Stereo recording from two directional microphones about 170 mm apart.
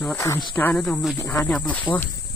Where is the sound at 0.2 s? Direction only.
20° left (ahead or behind).